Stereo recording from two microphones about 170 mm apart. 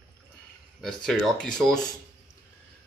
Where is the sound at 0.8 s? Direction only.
5° left (ahead or behind).